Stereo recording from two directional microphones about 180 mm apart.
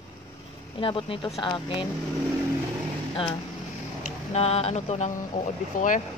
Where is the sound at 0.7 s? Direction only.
30° left (ahead or behind).